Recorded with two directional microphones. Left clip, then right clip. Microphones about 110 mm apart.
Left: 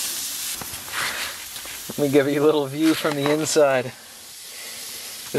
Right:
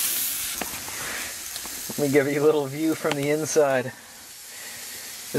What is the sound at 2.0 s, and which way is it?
Speech, 15° left (ahead or behind).